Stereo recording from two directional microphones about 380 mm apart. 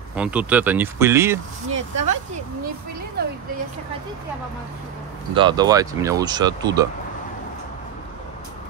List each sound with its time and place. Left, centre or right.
0.1 s speech: centre
1.7 s speech: centre
3.2 s speech: right
5.3 s speech: centre